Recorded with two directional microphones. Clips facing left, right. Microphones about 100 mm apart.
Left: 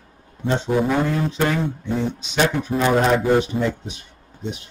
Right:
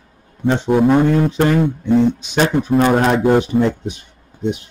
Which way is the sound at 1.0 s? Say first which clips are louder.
Right 6 dB; 55° right (ahead or behind).